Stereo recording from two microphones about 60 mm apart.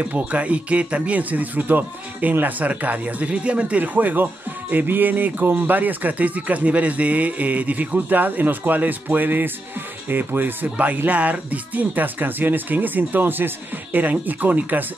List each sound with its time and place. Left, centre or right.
0.0 s a man's voice: right